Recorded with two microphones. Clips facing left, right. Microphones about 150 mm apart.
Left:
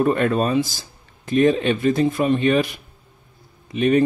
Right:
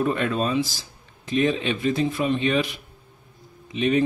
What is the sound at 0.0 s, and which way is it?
Speech, 50° left (ahead or behind).